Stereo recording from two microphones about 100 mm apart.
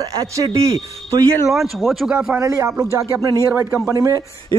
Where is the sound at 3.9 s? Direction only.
35° right (ahead or behind).